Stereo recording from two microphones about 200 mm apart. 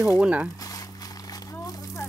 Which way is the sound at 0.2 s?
5° right (ahead or behind).